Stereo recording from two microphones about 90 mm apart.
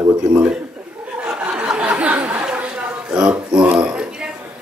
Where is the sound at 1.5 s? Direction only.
15° right (ahead or behind).